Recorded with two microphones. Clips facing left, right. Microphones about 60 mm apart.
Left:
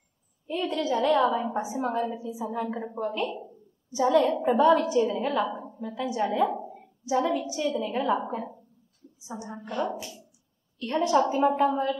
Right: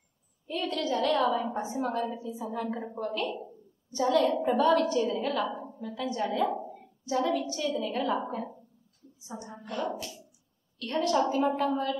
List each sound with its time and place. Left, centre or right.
0.5 s a woman's voice: centre
9.2 s a woman's voice: left